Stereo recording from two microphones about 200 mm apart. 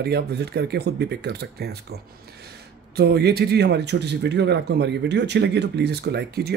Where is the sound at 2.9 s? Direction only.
55° right (ahead or behind).